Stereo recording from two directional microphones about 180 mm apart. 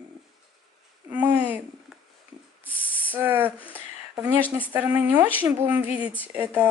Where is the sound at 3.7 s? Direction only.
10° right (ahead or behind).